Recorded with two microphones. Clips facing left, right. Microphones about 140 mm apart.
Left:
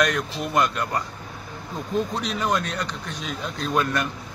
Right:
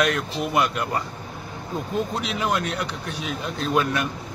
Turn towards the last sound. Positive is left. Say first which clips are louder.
# right 1 dB
turn(degrees=-5)  # may be behind; listen again after turning